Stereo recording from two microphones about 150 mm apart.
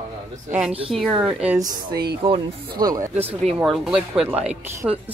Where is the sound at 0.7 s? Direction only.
40° right (ahead or behind).